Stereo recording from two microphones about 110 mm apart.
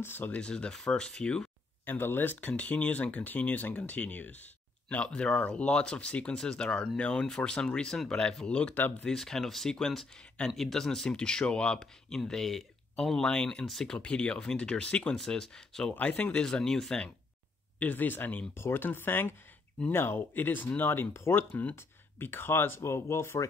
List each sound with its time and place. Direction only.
0.0 s speech: 20° left (ahead or behind)
2.0 s speech: 20° left (ahead or behind)
17.7 s speech: 15° left (ahead or behind)